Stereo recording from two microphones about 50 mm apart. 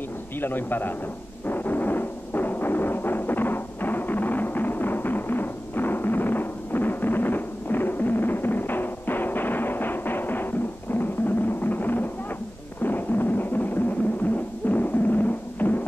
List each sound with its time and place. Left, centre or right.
0.4 s a man's voice: left
1.5 s music: left